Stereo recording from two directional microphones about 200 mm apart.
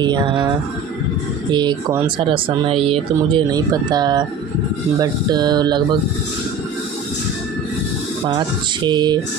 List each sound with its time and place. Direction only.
0.0 s speech: 25° right (ahead or behind)
1.5 s speech: 20° right (ahead or behind)
8.3 s speech: 20° right (ahead or behind)